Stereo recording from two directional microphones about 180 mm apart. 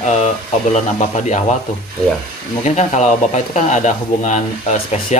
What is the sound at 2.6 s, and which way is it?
Speech, 40° left (ahead or behind).